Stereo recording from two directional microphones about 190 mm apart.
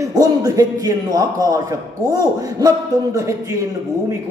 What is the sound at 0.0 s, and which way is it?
A man's voice, 20° right (ahead or behind).